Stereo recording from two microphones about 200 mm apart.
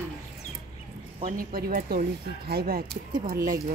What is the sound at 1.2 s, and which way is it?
Speech, 45° right (ahead or behind).